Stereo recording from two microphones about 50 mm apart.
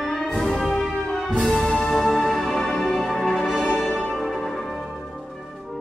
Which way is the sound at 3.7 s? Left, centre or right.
Centre.